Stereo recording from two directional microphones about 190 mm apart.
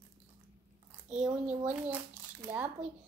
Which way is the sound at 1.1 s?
5° right (ahead or behind).